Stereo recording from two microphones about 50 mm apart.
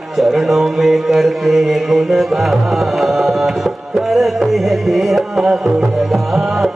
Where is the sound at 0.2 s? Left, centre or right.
Centre.